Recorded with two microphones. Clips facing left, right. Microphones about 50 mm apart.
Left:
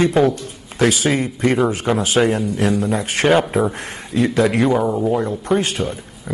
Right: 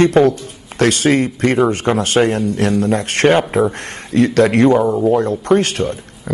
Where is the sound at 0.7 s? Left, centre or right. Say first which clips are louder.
Right 3 dB; right.